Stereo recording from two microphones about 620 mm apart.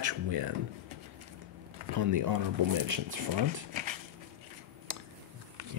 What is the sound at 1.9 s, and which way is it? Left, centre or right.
Speech, right.